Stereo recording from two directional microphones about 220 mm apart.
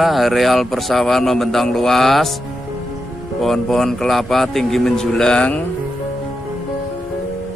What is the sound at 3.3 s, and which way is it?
Speech, centre (ahead or behind).